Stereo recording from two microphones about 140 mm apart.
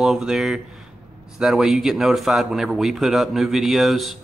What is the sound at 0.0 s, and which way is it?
Speech, 5° right (ahead or behind).